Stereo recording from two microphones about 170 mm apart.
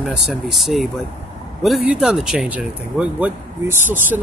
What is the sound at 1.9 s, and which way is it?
Speech, 5° right (ahead or behind).